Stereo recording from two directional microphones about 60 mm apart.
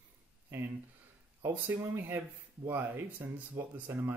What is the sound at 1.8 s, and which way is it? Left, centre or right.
Speech, right.